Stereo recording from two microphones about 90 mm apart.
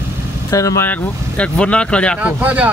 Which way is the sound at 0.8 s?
15° left (ahead or behind).